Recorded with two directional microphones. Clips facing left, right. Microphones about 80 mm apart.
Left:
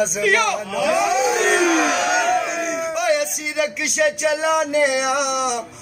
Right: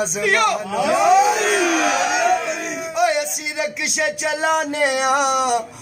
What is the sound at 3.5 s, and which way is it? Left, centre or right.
Music, right.